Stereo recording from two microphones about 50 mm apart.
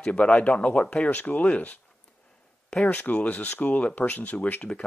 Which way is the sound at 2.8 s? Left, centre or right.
Left.